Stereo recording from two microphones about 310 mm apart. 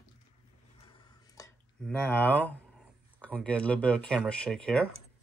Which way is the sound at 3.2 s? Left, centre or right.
Centre.